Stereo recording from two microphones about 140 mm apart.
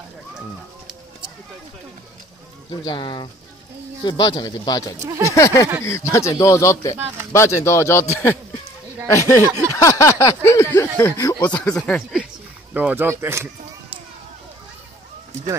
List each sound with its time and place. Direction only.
2.8 s speech: 35° left (ahead or behind)
4.9 s speech: 20° right (ahead or behind)
5.2 s speech: 20° left (ahead or behind)
9.4 s a sound: 20° right (ahead or behind)
9.8 s speech: 20° left (ahead or behind)
11.5 s speech: 5° left (ahead or behind)
12.7 s speech: 15° right (ahead or behind)